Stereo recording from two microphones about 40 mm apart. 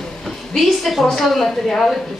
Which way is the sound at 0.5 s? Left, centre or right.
Centre.